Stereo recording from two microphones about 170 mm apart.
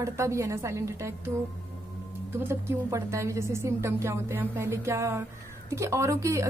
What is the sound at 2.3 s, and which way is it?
A woman's voice, 15° right (ahead or behind).